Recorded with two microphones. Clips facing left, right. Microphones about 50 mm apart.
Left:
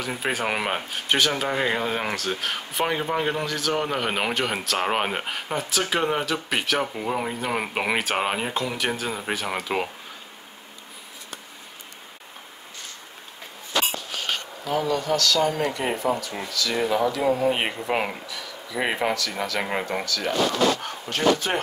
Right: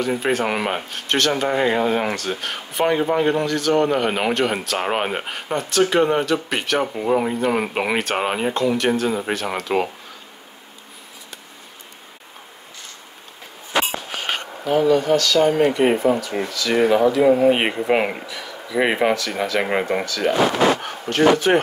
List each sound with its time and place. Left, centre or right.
0.0 s speech: centre
14.7 s speech: right